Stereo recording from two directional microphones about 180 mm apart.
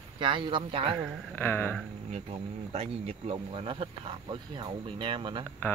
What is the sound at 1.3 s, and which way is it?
Speech, 10° left (ahead or behind).